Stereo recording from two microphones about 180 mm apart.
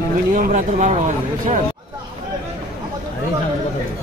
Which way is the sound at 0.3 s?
45° right (ahead or behind).